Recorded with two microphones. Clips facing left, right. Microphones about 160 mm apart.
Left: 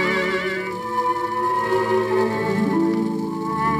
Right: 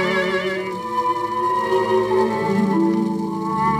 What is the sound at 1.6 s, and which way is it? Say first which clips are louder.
Music: right 2 dB; 20° right (ahead or behind).